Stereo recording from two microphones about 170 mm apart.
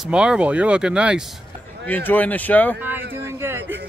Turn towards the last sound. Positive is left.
turn(degrees=-15)  # may be behind; listen again after turning